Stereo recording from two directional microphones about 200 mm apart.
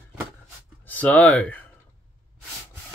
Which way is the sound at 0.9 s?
10° left (ahead or behind).